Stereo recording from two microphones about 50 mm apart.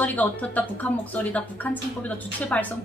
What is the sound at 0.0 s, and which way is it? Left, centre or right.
A woman's voice, left.